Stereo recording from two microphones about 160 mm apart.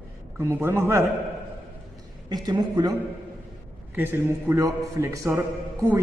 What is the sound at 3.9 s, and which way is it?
A man's voice, 15° right (ahead or behind).